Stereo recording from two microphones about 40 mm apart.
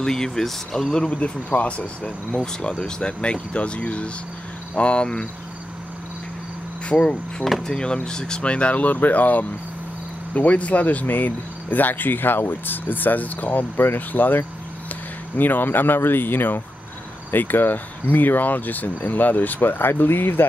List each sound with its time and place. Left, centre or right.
0.0 s speech: centre
1.1 s speech: left
2.8 s speech: left
6.9 s speech: left
13.7 s speech: left